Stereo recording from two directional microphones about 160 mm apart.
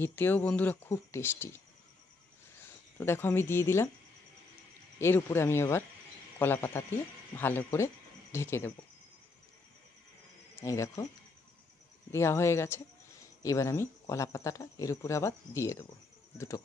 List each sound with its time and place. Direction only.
0.0 s speech: 10° left (ahead or behind)
3.0 s speech: 15° left (ahead or behind)
4.9 s speech: 15° left (ahead or behind)
10.5 s speech: 20° left (ahead or behind)
12.1 s speech: 15° left (ahead or behind)